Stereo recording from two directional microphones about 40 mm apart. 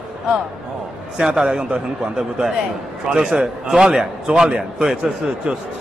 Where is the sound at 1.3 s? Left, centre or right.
Centre.